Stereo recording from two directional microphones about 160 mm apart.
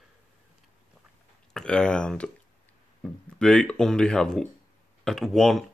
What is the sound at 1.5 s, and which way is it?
Speech, 5° left (ahead or behind).